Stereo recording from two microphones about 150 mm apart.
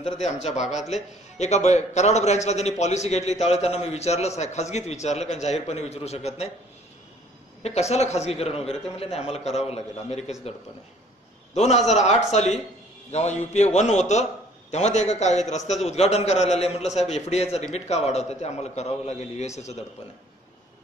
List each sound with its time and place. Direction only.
0.0 s a man's voice: 45° left (ahead or behind)
7.9 s a man's voice: 45° left (ahead or behind)
11.5 s a man's voice: 50° left (ahead or behind)